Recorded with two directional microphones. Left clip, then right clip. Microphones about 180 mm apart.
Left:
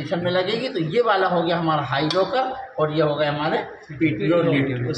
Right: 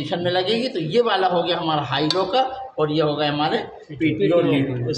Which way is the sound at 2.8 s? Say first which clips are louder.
Even; 50° right (ahead or behind).